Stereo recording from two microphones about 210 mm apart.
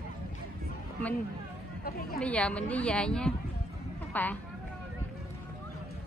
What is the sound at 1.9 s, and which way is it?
Speech, 45° left (ahead or behind).